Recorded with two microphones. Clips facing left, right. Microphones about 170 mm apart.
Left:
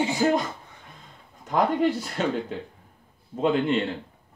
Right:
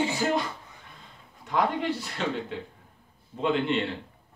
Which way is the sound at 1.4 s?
45° left (ahead or behind).